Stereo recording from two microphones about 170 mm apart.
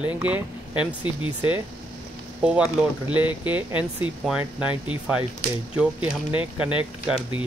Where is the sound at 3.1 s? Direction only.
30° left (ahead or behind).